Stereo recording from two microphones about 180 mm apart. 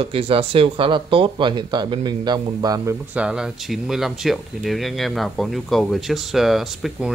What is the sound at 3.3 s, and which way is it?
Speech, 5° right (ahead or behind).